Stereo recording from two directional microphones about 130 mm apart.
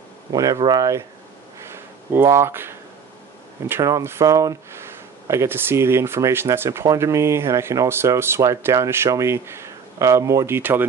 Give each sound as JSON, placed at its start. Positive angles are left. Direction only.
{"t": 0.3, "sound": "speech", "side_deg": -30}
{"t": 2.1, "sound": "speech", "side_deg": -20}